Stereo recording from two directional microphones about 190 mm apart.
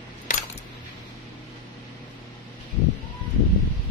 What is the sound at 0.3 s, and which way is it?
Coin, 40° left (ahead or behind).